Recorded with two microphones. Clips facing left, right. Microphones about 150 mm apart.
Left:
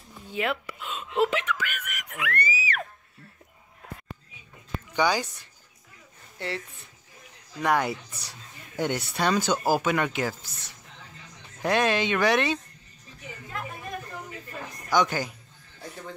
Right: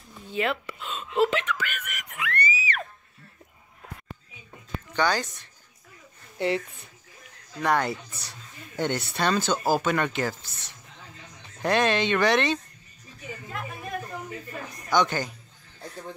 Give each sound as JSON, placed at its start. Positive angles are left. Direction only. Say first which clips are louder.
{"t": 0.1, "sound": "speech", "louder": "right 1 dB", "side_deg": 10}
{"t": 4.9, "sound": "speech", "louder": "left 1 dB", "side_deg": 10}
{"t": 6.3, "sound": "speech", "louder": "right 8 dB", "side_deg": -15}
{"t": 7.6, "sound": "speech", "louder": "even", "side_deg": 10}
{"t": 11.6, "sound": "speech", "louder": "right 1 dB", "side_deg": 5}
{"t": 14.9, "sound": "speech", "louder": "even", "side_deg": 5}